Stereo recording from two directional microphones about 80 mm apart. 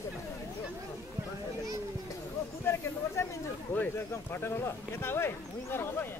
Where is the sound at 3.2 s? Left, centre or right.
Left.